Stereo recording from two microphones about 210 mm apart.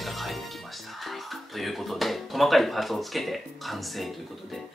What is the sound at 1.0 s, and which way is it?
Speech, centre (ahead or behind).